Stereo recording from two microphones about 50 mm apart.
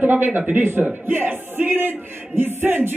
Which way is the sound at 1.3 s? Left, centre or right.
Right.